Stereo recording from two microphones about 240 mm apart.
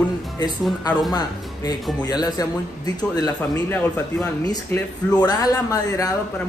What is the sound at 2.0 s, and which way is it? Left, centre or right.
Speech, centre.